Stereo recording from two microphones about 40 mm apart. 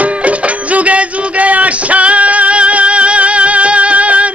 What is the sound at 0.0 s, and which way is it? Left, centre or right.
Music, right.